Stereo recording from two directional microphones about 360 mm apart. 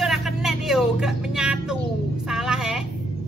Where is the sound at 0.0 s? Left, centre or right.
Centre.